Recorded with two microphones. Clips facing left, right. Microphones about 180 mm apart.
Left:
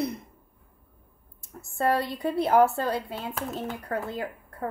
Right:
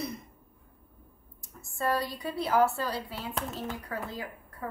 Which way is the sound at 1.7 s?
60° left (ahead or behind).